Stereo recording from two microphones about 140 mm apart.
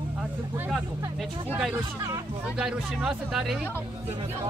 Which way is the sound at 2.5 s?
5° right (ahead or behind).